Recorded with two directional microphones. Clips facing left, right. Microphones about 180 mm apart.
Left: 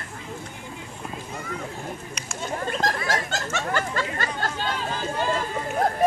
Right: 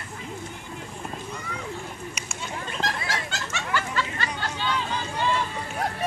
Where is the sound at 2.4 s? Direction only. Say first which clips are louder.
Left 6 dB; 45° left (ahead or behind).